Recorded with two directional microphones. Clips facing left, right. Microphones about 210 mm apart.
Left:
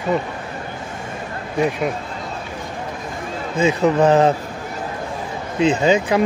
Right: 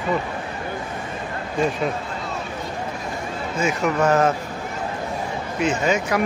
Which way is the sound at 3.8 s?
35° left (ahead or behind).